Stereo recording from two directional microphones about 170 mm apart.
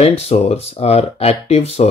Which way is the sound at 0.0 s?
35° left (ahead or behind).